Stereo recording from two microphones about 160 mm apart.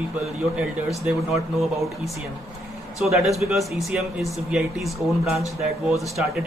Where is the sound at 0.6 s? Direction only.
5° right (ahead or behind).